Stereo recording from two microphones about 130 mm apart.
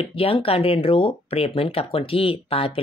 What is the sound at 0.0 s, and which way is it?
Speech, 45° left (ahead or behind).